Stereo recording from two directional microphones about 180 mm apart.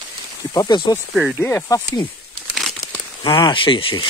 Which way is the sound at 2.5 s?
Centre (ahead or behind).